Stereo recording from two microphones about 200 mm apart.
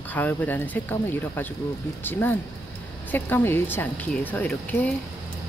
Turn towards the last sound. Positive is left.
turn(degrees=5)  # may be behind; listen again after turning